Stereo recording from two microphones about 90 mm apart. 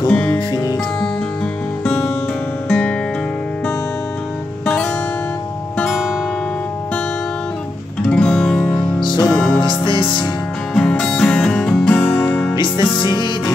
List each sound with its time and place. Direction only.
0.1 s music: 15° left (ahead or behind)
1.9 s music: 10° left (ahead or behind)
4.6 s music: 10° left (ahead or behind)
8.1 s music: 10° left (ahead or behind)
9.0 s music: 55° left (ahead or behind)
9.3 s music: 15° left (ahead or behind)
9.6 s music: 65° left (ahead or behind)
10.8 s music: 15° left (ahead or behind)
12.5 s music: 60° left (ahead or behind)